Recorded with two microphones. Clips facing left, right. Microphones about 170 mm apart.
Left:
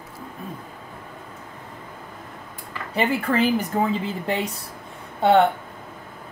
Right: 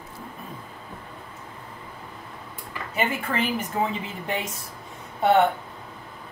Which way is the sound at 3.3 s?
35° left (ahead or behind).